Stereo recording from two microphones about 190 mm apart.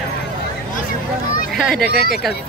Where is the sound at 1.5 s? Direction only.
Centre (ahead or behind).